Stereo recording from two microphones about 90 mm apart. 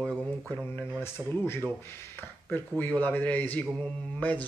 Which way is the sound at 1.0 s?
30° left (ahead or behind).